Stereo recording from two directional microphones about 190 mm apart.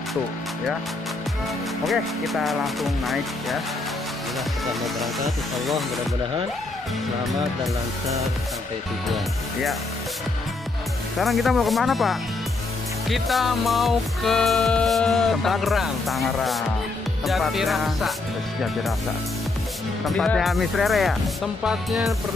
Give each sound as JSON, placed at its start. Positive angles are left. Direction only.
{"t": 1.9, "sound": "music", "side_deg": 0}
{"t": 4.6, "sound": "music", "side_deg": 0}
{"t": 9.1, "sound": "music", "side_deg": 0}
{"t": 11.1, "sound": "music", "side_deg": 0}
{"t": 20.1, "sound": "music", "side_deg": 0}